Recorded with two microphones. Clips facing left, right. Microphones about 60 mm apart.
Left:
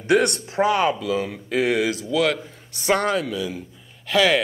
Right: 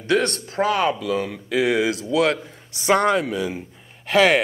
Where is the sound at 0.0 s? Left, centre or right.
Centre.